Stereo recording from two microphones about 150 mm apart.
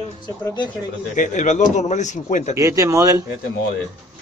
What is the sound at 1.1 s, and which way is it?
A man's voice, 55° left (ahead or behind).